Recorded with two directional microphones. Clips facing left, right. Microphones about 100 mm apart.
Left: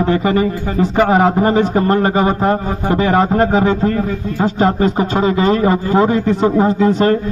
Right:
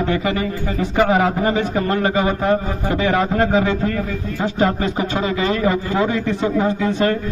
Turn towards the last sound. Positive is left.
turn(degrees=40)  # may be behind; listen again after turning